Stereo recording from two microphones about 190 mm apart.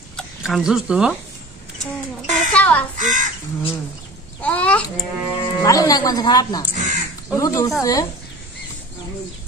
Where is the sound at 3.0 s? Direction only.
40° right (ahead or behind).